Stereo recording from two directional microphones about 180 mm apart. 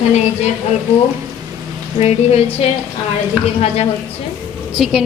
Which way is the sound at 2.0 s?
35° left (ahead or behind).